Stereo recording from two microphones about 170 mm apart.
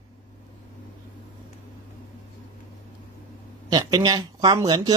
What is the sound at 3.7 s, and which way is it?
Speech, 25° right (ahead or behind).